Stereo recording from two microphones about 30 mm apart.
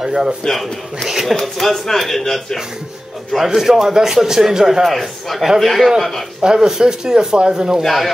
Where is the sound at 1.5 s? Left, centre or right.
Centre.